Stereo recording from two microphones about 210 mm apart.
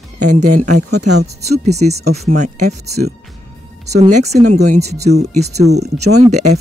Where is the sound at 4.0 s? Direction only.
30° right (ahead or behind).